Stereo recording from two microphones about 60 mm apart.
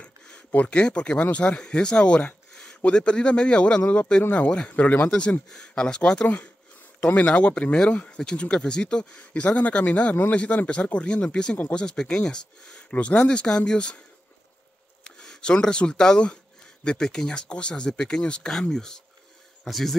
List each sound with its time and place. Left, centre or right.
0.0 s a sound: left
1.2 s speech: centre
5.5 s speech: centre
15.0 s speech: centre